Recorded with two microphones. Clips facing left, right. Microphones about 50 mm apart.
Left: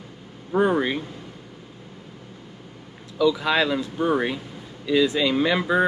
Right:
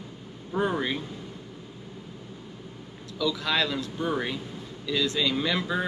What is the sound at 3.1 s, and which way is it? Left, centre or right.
Speech, centre.